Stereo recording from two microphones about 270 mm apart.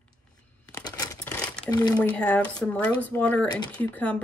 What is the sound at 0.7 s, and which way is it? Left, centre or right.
Crumpling, centre.